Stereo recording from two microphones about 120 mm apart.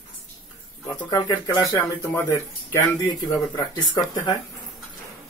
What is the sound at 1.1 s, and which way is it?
Speech, 30° left (ahead or behind).